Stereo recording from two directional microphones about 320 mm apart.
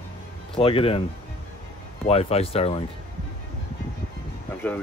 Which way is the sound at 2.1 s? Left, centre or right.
Centre.